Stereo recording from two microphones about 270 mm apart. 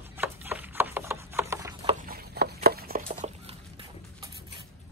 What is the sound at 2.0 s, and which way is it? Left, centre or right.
Chopping, right.